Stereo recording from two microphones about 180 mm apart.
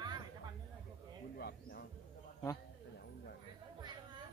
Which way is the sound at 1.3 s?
60° left (ahead or behind).